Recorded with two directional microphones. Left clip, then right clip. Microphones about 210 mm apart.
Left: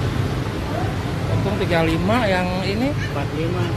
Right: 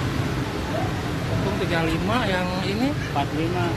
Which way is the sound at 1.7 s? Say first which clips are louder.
Left 6 dB; 15° left (ahead or behind).